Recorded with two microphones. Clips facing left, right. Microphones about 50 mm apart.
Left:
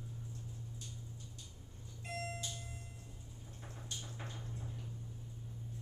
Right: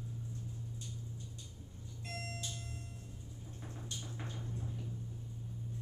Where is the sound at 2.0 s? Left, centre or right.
Centre.